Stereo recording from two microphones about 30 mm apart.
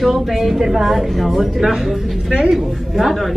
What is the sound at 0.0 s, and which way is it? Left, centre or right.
A woman's voice, centre.